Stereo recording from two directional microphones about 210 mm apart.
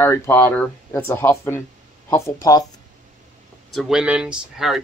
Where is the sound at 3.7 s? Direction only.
Centre (ahead or behind).